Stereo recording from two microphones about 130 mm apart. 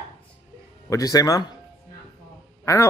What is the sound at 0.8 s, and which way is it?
Speech, 25° left (ahead or behind).